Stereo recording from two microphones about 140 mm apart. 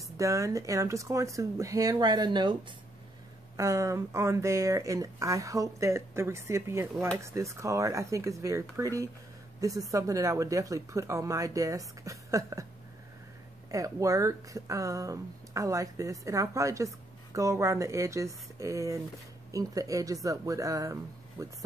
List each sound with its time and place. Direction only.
0.2 s speech: 25° right (ahead or behind)
3.5 s speech: 25° right (ahead or behind)
13.7 s speech: 25° right (ahead or behind)